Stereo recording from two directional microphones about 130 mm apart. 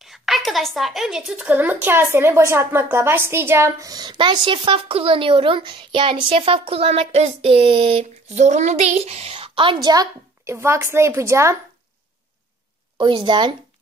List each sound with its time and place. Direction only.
0.0 s a woman's voice: centre (ahead or behind); by 11.5 s 20° right (ahead or behind)
12.9 s a woman's voice: 40° right (ahead or behind)